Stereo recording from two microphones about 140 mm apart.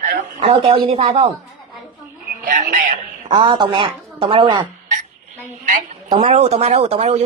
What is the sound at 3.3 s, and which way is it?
Speech, 35° right (ahead or behind).